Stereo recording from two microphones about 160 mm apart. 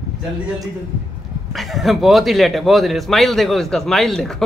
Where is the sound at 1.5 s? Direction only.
Centre (ahead or behind).